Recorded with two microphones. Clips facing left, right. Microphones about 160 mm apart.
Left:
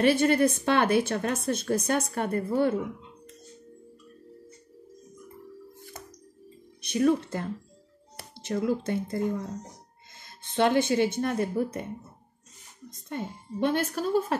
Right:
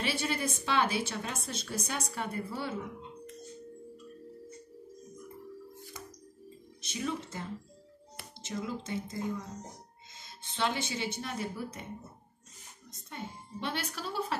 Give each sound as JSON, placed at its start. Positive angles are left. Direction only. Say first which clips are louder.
{"t": 0.0, "sound": "speech", "louder": "left 12 dB", "side_deg": 55}
{"t": 6.8, "sound": "speech", "louder": "left 12 dB", "side_deg": 55}
{"t": 13.1, "sound": "speech", "louder": "left 8 dB", "side_deg": 50}